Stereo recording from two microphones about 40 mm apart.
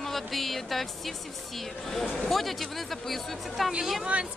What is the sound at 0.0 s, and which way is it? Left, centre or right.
A man's voice, centre.